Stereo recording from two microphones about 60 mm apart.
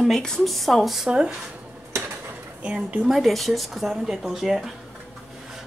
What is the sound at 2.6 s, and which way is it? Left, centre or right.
Speech, right.